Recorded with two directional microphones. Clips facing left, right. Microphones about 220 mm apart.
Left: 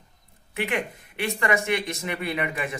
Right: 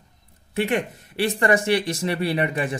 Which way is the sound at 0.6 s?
35° right (ahead or behind).